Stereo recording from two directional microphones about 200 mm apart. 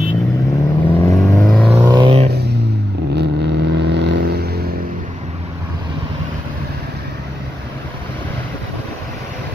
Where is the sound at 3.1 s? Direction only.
60° right (ahead or behind).